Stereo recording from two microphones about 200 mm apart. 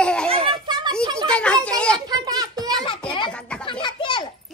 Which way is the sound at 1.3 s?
5° left (ahead or behind).